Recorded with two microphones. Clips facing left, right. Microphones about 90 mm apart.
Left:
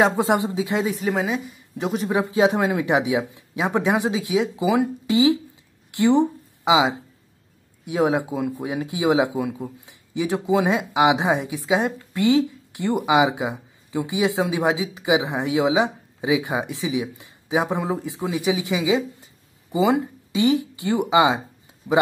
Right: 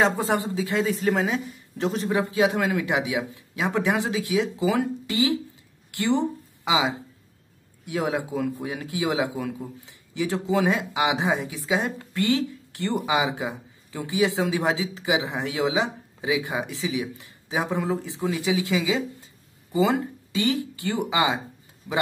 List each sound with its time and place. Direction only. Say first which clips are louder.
0.0 s speech: left 4 dB; 20° left (ahead or behind)
0.9 s a woman's voice: even; 5° left (ahead or behind)
1.9 s speech: left 2 dB; 15° left (ahead or behind)